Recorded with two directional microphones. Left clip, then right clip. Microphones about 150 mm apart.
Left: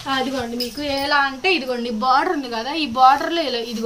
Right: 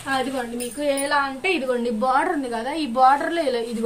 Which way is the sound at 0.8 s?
15° right (ahead or behind).